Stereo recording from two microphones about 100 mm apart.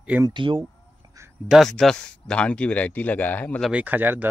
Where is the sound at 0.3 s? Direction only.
55° right (ahead or behind).